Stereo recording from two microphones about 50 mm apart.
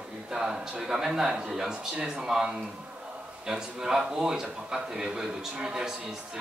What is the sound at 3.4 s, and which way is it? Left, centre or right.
A man's voice, centre.